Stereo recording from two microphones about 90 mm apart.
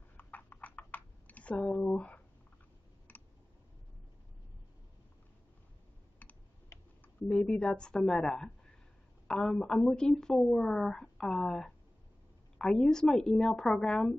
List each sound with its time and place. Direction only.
0.2 s computer keyboard: 20° left (ahead or behind)
3.1 s a sound: 20° left (ahead or behind)
7.2 s a woman's voice: 10° left (ahead or behind)